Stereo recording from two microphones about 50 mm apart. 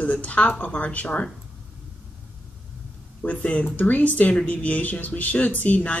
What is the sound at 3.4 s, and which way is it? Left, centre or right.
Speech, left.